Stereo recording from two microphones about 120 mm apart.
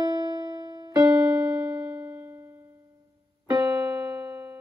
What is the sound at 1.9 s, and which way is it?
Music, 20° right (ahead or behind).